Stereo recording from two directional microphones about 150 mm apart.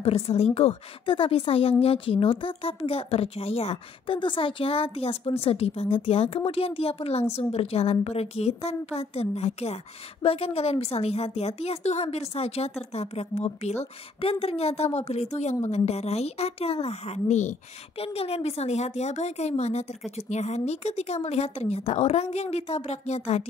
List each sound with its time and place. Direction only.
0.0 s a woman's voice: 45° left (ahead or behind)